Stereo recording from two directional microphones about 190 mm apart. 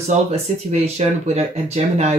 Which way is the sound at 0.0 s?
35° right (ahead or behind).